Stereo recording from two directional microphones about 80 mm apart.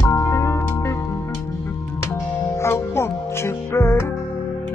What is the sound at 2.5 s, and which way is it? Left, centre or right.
Music, left.